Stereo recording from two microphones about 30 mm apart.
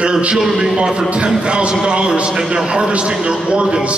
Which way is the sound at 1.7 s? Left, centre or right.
Right.